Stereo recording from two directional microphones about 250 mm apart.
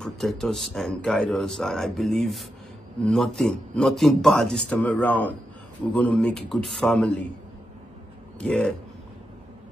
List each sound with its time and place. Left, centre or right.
0.0 s speech: centre
8.4 s speech: centre